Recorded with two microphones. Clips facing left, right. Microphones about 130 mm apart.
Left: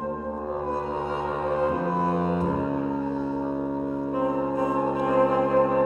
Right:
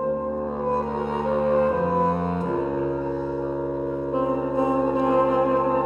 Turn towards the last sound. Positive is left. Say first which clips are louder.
# right 3 dB
turn(degrees=-25)  # may be behind; listen again after turning